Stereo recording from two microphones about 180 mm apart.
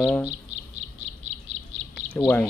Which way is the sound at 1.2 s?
90° right.